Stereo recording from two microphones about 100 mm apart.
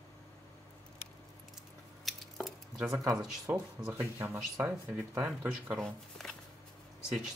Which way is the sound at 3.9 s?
20° right (ahead or behind).